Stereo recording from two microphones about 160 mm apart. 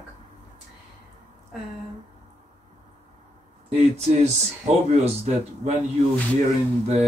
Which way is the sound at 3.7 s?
40° right (ahead or behind).